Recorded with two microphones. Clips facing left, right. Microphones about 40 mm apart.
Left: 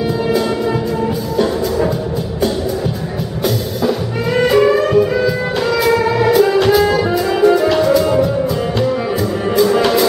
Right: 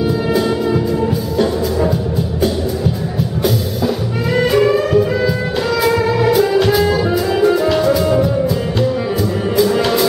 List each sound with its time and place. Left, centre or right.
3.4 s music: centre
9.6 s music: centre